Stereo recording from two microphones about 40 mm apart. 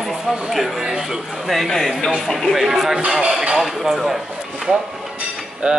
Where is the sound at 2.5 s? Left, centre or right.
Centre.